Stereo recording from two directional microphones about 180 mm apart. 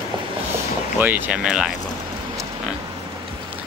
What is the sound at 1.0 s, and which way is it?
Speech, 10° right (ahead or behind).